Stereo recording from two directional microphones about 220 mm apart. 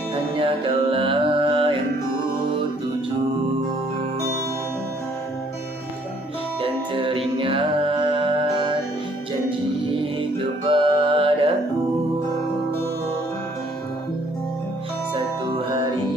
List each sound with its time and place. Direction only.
0.1 s music: 25° right (ahead or behind)
6.6 s music: 25° right (ahead or behind)
9.9 s music: 25° right (ahead or behind)
15.5 s music: 20° right (ahead or behind)